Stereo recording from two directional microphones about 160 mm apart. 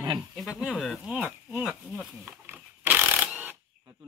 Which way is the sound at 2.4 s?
10° right (ahead or behind).